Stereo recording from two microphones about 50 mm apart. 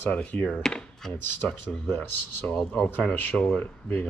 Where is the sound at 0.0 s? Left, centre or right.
Left.